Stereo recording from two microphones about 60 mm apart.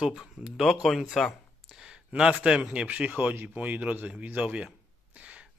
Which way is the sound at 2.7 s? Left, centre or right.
Right.